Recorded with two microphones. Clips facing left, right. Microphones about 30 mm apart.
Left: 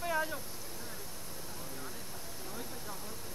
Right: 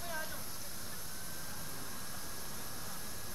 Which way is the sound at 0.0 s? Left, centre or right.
Left.